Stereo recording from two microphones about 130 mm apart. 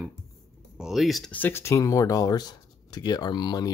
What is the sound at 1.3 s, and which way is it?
Speech, 15° left (ahead or behind).